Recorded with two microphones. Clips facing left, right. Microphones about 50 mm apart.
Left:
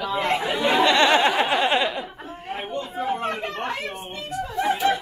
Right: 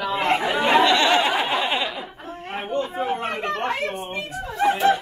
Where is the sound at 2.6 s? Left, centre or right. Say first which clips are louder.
Right 6 dB; right.